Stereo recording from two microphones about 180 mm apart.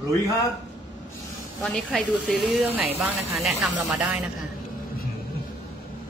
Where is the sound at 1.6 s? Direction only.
Centre (ahead or behind).